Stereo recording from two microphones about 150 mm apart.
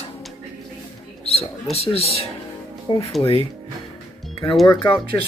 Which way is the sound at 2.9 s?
20° left (ahead or behind).